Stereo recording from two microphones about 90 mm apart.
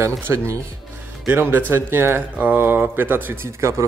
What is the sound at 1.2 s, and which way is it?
Speech, 20° right (ahead or behind).